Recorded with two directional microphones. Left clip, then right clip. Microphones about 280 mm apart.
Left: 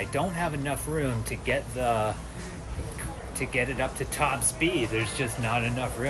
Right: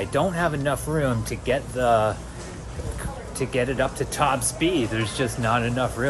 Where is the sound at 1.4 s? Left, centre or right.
Centre.